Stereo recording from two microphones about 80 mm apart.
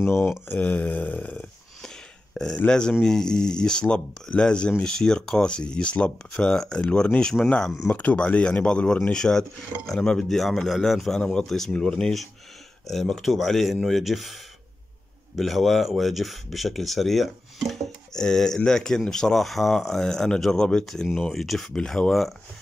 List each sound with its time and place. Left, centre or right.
0.0 s mantra: left
0.6 s a sound: centre
2.3 s speech: centre
15.3 s speech: centre